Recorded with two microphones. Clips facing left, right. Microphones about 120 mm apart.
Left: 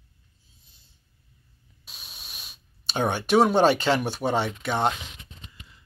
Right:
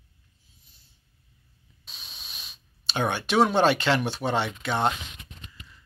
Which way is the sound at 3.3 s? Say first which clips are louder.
Left 2 dB; 15° left (ahead or behind).